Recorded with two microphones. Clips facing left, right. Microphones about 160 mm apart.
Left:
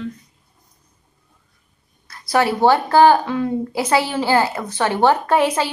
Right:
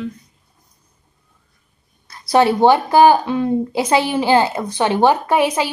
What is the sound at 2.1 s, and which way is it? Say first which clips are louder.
Speech: right 4 dB; 20° right (ahead or behind).